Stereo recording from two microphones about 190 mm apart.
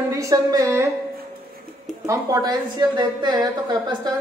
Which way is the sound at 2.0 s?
20° right (ahead or behind).